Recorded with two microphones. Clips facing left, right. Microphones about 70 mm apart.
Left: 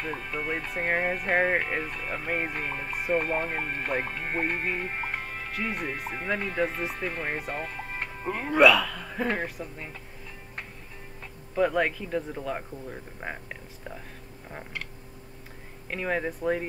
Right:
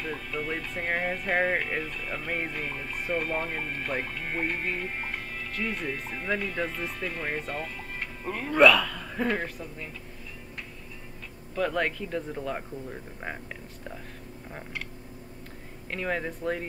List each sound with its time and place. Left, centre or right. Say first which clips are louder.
0.0 s speech: left 1 dB; left
5.5 s speech: even; centre
7.3 s music: left 1 dB; left
8.3 s speech: left 2 dB; centre
8.5 s speech: even; centre
11.5 s speech: left 3 dB; centre
15.9 s speech: left 2 dB; centre